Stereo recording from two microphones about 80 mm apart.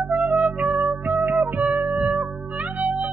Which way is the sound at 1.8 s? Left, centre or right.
Centre.